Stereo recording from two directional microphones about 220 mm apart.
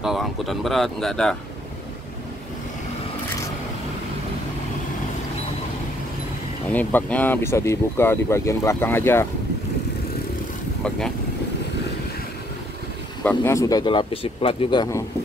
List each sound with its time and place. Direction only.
0.0 s speech: centre (ahead or behind)
6.7 s speech: 10° left (ahead or behind)
10.8 s speech: 5° left (ahead or behind)
13.2 s speech: 10° left (ahead or behind)